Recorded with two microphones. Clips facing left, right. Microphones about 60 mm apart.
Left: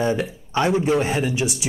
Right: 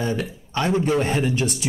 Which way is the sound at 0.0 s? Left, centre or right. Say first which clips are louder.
Left 3 dB; left.